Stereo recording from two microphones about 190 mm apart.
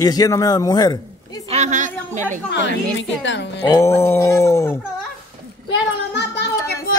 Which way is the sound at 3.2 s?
70° left (ahead or behind).